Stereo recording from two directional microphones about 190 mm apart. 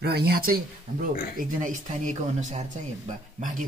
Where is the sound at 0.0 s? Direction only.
55° right (ahead or behind).